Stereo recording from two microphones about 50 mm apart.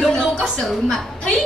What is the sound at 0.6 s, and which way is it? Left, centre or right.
Speech, centre.